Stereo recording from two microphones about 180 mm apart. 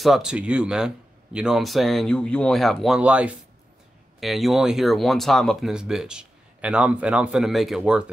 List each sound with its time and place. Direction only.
0.0 s speech: centre (ahead or behind)